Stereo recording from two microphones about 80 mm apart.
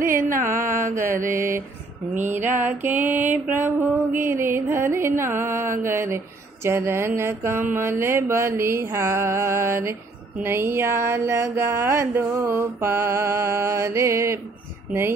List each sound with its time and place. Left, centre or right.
1.0 s mantra: right
14.9 s speech: right